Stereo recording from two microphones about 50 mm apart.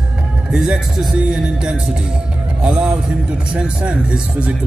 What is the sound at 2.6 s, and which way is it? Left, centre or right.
A man's voice, centre.